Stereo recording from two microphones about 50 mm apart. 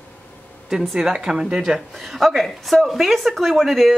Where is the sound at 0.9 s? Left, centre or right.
Centre.